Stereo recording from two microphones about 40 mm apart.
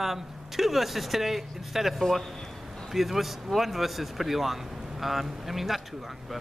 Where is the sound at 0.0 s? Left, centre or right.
Centre.